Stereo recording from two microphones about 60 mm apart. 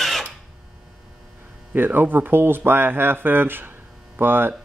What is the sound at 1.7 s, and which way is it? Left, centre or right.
Speech, right.